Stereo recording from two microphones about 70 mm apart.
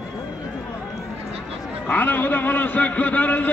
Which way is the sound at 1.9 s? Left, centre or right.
Left.